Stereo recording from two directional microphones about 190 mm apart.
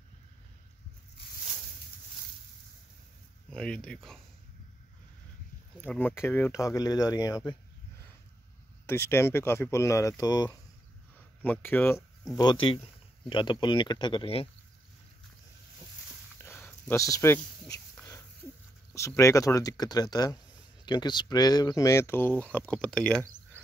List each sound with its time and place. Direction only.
3.4 s speech: 5° left (ahead or behind)
5.8 s speech: 10° left (ahead or behind)
8.8 s speech: 10° left (ahead or behind)
11.4 s speech: 10° left (ahead or behind)
12.4 s speech: 25° left (ahead or behind)
16.4 s a sound: 10° left (ahead or behind)
18.9 s speech: 15° left (ahead or behind)